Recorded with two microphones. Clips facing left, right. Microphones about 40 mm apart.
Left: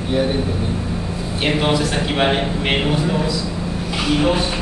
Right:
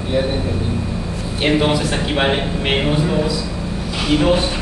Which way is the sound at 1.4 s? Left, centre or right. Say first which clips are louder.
Right 2 dB; centre.